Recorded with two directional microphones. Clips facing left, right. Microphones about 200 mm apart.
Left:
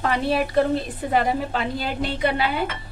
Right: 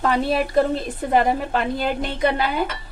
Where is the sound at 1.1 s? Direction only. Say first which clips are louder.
Right 3 dB; 50° right (ahead or behind).